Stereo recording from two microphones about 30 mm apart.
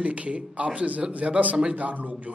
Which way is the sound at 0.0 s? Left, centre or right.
Right.